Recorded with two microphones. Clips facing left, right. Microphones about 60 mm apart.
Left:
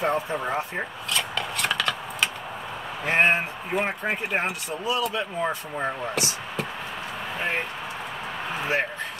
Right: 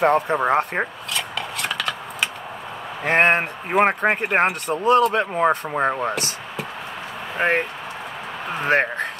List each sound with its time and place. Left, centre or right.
0.0 s speech: right
1.1 s a sound: centre
3.1 s speech: right
7.3 s speech: right
8.6 s speech: right